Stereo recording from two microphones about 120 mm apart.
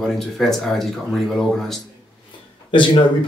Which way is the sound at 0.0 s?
Centre (ahead or behind).